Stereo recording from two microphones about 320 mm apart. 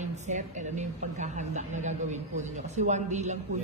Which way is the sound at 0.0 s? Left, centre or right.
Right.